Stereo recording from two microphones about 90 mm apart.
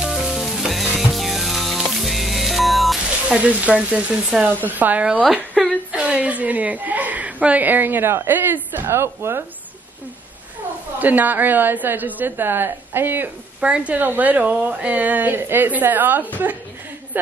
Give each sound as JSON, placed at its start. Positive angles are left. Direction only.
{"t": 0.0, "sound": "sizzle", "side_deg": -5}
{"t": 3.3, "sound": "a woman's voice", "side_deg": -15}
{"t": 5.5, "sound": "a sound", "side_deg": 15}
{"t": 5.9, "sound": "a woman's voice", "side_deg": -10}
{"t": 11.0, "sound": "a woman's voice", "side_deg": -20}